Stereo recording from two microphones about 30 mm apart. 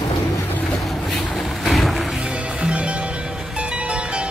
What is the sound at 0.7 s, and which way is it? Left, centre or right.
Music, centre.